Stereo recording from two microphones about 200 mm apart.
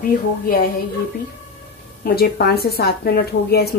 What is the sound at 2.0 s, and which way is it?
A woman's voice, 50° left (ahead or behind).